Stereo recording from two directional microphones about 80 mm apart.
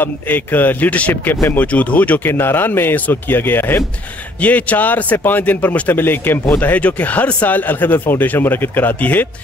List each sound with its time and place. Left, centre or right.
0.0 s speech: left